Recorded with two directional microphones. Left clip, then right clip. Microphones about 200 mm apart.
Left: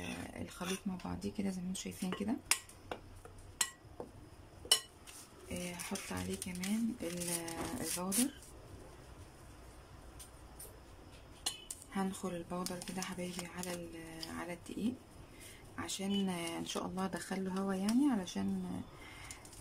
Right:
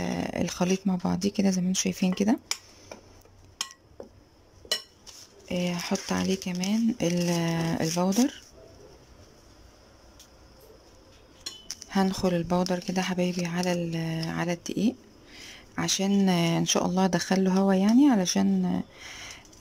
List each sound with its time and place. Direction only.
0.0 s speech: 45° right (ahead or behind)
5.5 s speech: 50° right (ahead or behind)
11.9 s speech: 40° right (ahead or behind)